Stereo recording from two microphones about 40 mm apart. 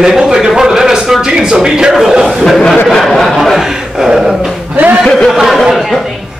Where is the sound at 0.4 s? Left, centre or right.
Centre.